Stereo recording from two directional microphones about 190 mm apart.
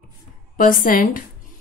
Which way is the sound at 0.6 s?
45° left (ahead or behind).